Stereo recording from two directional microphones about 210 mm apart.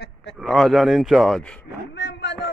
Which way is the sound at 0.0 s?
55° left (ahead or behind).